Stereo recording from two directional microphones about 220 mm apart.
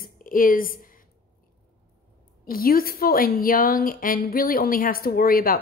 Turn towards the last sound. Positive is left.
turn(degrees=40)  # may be behind; listen again after turning